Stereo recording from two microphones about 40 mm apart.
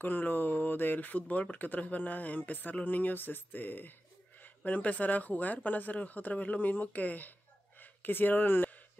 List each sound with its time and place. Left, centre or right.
0.0 s speech: left
4.6 s speech: left
6.7 s speech: left
7.8 s speech: left